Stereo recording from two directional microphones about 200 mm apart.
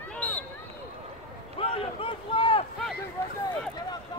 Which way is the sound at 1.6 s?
25° left (ahead or behind).